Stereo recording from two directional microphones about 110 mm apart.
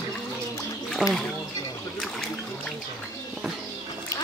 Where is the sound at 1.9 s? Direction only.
5° left (ahead or behind).